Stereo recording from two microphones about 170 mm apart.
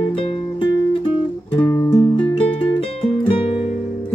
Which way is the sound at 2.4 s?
35° left (ahead or behind).